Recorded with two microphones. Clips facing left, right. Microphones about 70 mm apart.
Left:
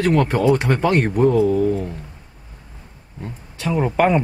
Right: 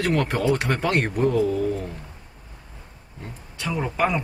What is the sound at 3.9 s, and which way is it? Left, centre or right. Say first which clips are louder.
Speech: left 6 dB; left.